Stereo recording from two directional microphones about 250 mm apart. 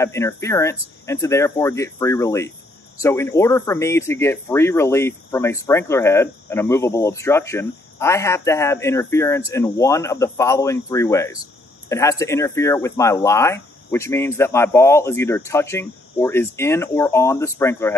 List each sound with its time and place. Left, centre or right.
0.0 s speech: centre